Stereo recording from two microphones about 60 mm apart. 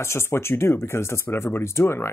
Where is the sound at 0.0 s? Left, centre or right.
Left.